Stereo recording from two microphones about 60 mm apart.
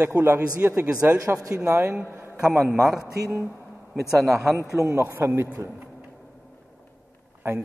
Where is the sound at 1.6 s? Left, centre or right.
Right.